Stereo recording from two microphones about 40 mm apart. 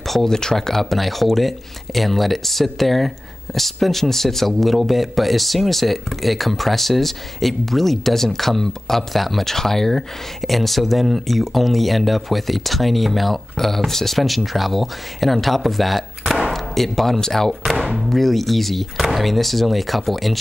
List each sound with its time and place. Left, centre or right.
0.0 s a sound: centre
0.3 s speech: centre
17.7 s speech: centre
18.1 s speech: centre